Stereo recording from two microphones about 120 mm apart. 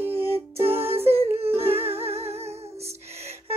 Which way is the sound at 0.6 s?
55° right (ahead or behind).